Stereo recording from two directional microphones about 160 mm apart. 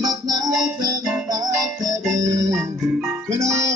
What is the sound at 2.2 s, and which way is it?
Organ, 20° right (ahead or behind).